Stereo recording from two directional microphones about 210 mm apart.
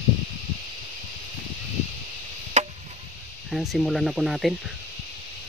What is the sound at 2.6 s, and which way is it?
Chop, 35° right (ahead or behind).